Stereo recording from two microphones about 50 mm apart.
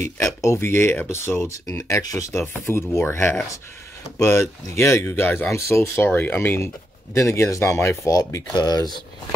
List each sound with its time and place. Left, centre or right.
0.2 s speech: left
0.6 s speech: left
1.7 s speech: left
2.4 s speech: left
5.5 s speech: left
6.0 s speech: left
7.2 s speech: left